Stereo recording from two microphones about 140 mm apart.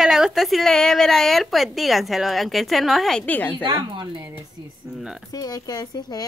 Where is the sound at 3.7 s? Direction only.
35° right (ahead or behind).